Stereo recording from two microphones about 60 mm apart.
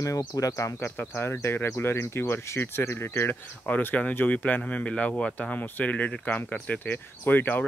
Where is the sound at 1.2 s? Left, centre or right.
Left.